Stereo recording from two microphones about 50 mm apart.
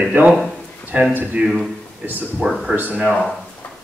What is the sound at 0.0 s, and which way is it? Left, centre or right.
Speech, right.